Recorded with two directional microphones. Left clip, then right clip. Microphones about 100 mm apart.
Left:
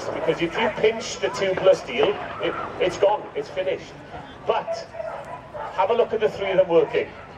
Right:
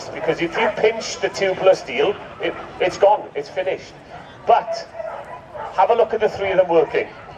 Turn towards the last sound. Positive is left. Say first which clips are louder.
# right 3 dB
turn(degrees=-35)  # may be behind; listen again after turning